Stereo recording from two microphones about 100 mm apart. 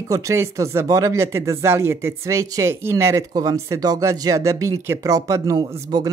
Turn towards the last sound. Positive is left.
turn(degrees=-30)  # may be behind; listen again after turning